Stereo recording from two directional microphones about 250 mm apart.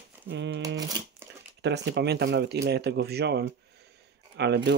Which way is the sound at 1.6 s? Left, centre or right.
Right.